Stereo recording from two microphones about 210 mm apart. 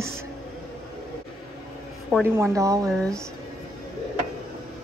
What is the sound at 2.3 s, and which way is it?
Speech, 15° right (ahead or behind).